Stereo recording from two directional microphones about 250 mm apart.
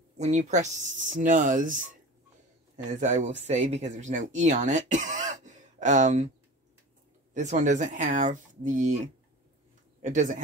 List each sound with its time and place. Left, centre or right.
0.2 s speech: right
7.3 s speech: right
10.0 s speech: right